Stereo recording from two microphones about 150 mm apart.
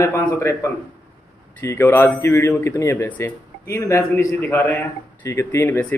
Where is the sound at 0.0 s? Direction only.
15° left (ahead or behind).